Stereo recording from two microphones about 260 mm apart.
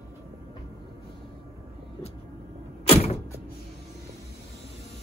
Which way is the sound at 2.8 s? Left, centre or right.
Left.